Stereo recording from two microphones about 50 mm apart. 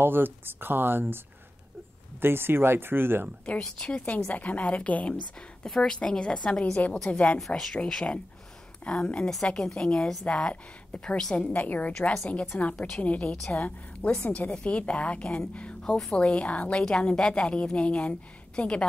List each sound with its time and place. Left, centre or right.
0.0 s speech: right
2.2 s speech: right
3.4 s a woman's voice: centre
4.3 s a woman's voice: left
7.3 s speech: centre
8.8 s a woman's voice: centre
16.7 s a woman's voice: centre